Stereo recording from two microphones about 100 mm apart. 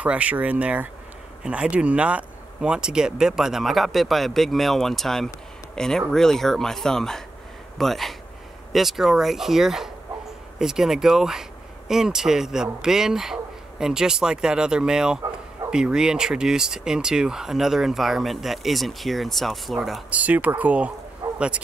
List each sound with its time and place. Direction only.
0.0 s speech: 15° right (ahead or behind)
20.1 s speech: 15° right (ahead or behind)
21.2 s chicken: 25° right (ahead or behind)